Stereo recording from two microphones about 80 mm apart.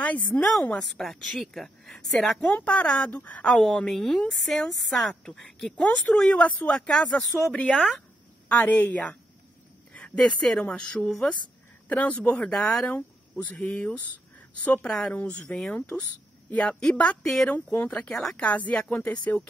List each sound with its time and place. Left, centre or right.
0.0 s a woman's voice: centre
0.7 s a woman's voice: centre
2.4 s a woman's voice: centre
3.4 s a woman's voice: centre
5.8 s speech: centre
6.9 s a woman's voice: centre